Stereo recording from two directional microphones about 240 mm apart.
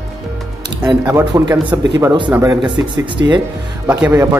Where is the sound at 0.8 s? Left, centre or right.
Centre.